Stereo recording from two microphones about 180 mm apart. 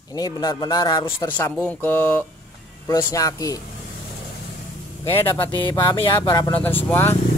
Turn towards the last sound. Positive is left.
turn(degrees=10)  # may be behind; listen again after turning